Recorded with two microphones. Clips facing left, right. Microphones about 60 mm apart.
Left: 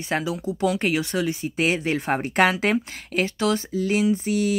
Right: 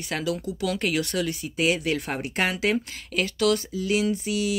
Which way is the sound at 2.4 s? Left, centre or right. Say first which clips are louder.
Left 5 dB; left.